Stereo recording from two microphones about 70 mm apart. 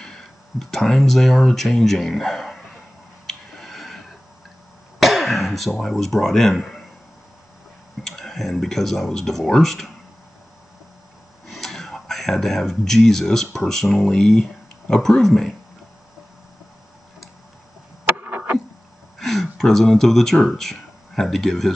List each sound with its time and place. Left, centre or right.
0.0 s speech: centre
3.3 s a sound: centre
5.0 s speech: centre
8.0 s speech: centre
11.4 s speech: centre
18.1 s a sound: right
19.1 s speech: centre